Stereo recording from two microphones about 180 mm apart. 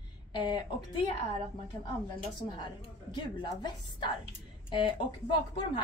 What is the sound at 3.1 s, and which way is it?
A woman's voice, 25° left (ahead or behind).